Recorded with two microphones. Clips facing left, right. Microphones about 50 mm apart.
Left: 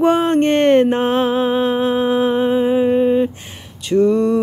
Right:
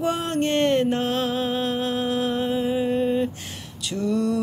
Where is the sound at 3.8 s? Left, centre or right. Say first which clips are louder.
Left 10 dB; left.